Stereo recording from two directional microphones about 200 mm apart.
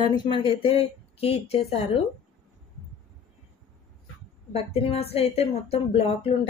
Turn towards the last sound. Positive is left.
turn(degrees=30)  # may be behind; listen again after turning